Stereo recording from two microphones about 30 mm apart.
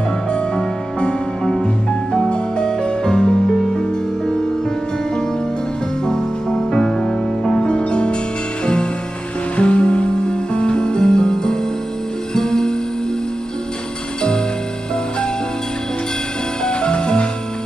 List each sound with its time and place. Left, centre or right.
2.2 s music: left
6.0 s music: centre
7.5 s music: left
9.6 s music: left
16.6 s music: left